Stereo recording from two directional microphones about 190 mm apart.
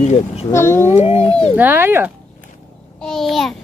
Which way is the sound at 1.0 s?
35° left (ahead or behind).